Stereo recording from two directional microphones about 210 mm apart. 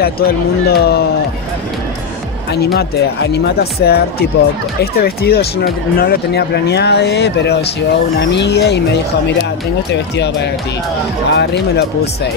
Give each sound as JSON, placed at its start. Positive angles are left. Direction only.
{"t": 0.0, "sound": "speech", "side_deg": 45}
{"t": 2.5, "sound": "speech", "side_deg": 50}
{"t": 10.1, "sound": "speech", "side_deg": 55}